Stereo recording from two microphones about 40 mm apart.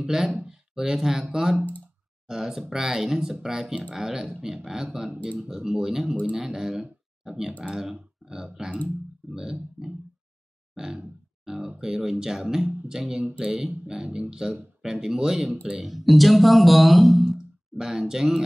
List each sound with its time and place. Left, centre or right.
0.0 s speech: centre
0.3 s speech: right
0.7 s speech: centre
10.7 s grunt: centre
11.4 s a sound: centre
11.8 s speech: centre
15.8 s speech: centre
17.7 s speech: centre